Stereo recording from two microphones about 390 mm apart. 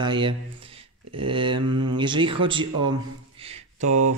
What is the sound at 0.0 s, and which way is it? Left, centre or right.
A man's voice, centre.